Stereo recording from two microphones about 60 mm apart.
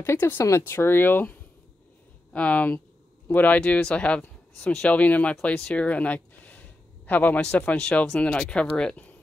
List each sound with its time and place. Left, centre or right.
0.0 s speech: left
0.7 s speech: left
5.5 s speech: centre
5.8 s a sound: left
7.3 s speech: centre